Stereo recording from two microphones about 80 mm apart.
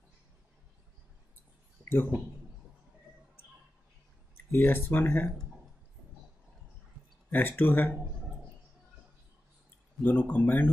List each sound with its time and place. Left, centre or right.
1.9 s speech: left
4.5 s speech: left
7.2 s speech: left
10.0 s speech: left